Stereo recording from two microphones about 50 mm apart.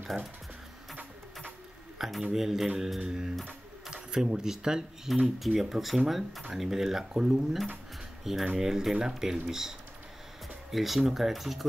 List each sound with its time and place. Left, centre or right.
2.0 s speech: centre